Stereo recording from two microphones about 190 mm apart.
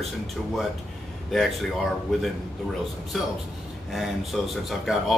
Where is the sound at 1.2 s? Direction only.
Centre (ahead or behind).